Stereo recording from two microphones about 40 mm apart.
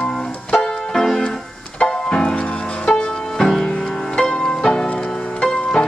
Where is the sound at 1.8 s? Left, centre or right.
Left.